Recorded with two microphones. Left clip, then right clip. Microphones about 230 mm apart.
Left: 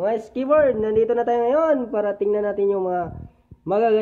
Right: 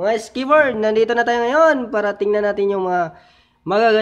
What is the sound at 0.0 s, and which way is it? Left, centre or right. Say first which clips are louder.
Speech: right 3 dB; right.